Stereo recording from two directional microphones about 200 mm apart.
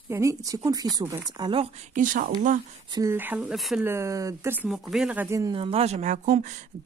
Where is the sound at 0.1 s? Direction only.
15° right (ahead or behind).